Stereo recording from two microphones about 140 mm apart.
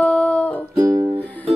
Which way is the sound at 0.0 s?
10° left (ahead or behind).